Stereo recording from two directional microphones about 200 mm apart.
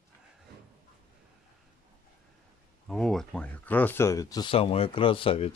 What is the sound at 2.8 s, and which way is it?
Speech, centre (ahead or behind).